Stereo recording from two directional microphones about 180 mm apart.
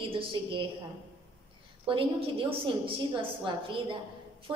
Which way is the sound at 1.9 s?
30° right (ahead or behind).